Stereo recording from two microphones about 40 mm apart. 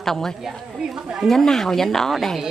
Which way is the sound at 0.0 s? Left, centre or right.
Centre.